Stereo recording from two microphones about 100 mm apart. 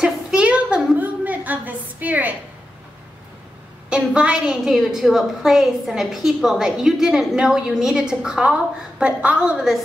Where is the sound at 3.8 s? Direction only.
10° right (ahead or behind).